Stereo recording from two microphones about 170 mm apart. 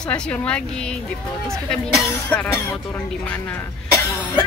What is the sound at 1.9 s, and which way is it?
Speech, 10° left (ahead or behind).